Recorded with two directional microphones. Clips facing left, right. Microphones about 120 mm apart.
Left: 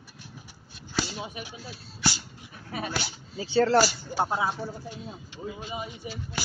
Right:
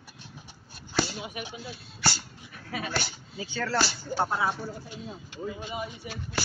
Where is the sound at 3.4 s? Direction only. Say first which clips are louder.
Left 9 dB; 30° left (ahead or behind).